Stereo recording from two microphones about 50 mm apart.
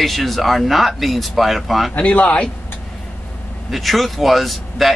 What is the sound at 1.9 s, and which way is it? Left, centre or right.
Speech, left.